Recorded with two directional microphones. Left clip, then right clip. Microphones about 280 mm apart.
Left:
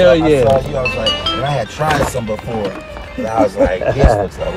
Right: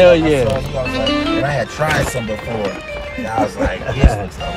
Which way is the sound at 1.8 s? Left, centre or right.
Left.